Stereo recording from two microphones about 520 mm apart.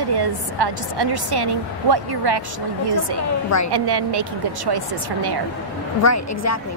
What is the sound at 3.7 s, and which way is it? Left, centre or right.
A woman's voice, right.